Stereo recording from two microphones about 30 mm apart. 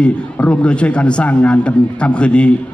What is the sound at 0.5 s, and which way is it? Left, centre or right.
A man's voice, left.